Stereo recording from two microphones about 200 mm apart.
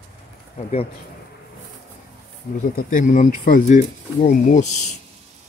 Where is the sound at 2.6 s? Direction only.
40° left (ahead or behind).